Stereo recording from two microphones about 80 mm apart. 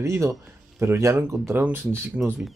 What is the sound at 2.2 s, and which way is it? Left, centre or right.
Speech, centre.